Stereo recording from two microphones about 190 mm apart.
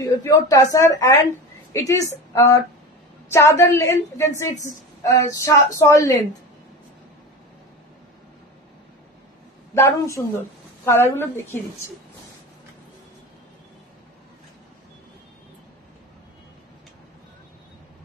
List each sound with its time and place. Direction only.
0.0 s a woman's voice: 15° left (ahead or behind)
9.8 s a woman's voice: 15° left (ahead or behind)